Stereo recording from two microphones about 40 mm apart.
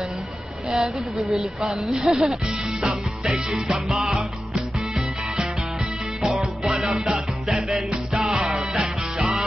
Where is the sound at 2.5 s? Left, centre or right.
Centre.